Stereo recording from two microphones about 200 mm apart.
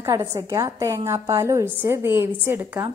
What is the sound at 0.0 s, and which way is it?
A woman's voice, 15° right (ahead or behind).